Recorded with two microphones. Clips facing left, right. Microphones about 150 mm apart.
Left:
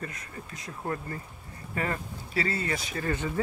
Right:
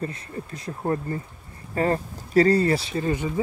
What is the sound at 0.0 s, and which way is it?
Speech, 30° right (ahead or behind).